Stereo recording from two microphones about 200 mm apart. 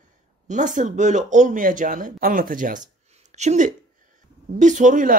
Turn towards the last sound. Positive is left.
turn(degrees=-40)  # may be behind; listen again after turning